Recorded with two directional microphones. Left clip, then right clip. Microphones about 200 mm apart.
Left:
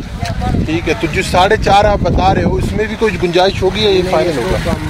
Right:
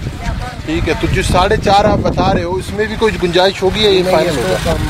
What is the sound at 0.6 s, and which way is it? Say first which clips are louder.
Speech: right 1 dB; 5° left (ahead or behind).